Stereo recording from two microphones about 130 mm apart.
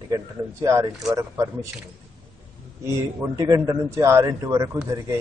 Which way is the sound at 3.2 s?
25° right (ahead or behind).